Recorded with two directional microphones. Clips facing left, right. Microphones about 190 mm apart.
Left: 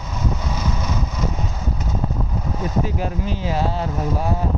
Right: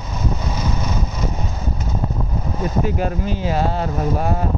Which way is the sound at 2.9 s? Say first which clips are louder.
Right 3 dB; 55° right (ahead or behind).